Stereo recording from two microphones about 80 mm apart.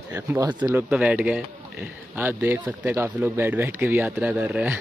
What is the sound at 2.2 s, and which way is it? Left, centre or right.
Speech, right.